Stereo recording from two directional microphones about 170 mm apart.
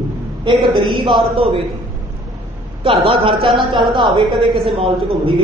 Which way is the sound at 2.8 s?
35° right (ahead or behind).